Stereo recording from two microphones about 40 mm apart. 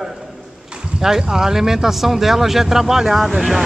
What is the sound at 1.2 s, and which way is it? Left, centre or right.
Speech, centre.